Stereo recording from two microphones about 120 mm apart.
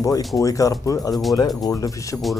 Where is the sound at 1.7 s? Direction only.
30° left (ahead or behind).